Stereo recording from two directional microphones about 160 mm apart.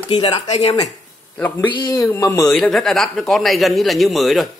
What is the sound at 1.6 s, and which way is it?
Speech, 30° left (ahead or behind).